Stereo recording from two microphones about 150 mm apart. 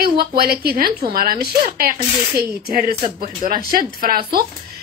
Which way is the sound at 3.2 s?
75° right (ahead or behind).